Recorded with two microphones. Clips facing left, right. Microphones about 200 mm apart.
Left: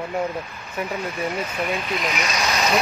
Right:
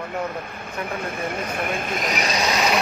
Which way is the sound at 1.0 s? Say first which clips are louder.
Left 1 dB; 50° right (ahead or behind).